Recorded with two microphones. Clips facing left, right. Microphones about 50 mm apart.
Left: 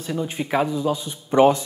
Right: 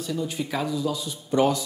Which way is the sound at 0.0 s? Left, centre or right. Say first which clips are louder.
Left 2 dB; left.